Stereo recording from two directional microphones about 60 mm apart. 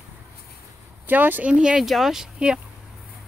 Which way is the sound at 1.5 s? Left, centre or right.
Centre.